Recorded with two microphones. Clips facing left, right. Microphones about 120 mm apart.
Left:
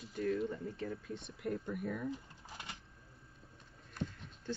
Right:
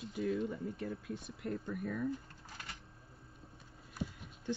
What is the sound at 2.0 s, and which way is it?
Typing, 20° left (ahead or behind).